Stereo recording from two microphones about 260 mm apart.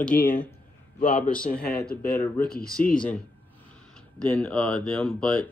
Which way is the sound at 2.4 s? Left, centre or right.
Left.